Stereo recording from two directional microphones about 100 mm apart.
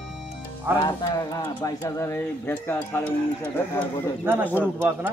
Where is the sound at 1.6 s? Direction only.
30° left (ahead or behind).